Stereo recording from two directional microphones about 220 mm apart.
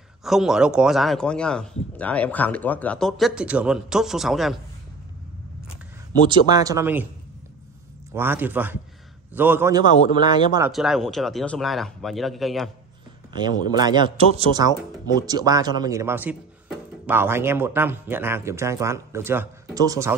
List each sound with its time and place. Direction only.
0.2 s speech: centre (ahead or behind)
6.1 s speech: 20° right (ahead or behind)
8.1 s speech: 10° right (ahead or behind)
10.7 s speech: centre (ahead or behind)
13.3 s a man's voice: 20° right (ahead or behind)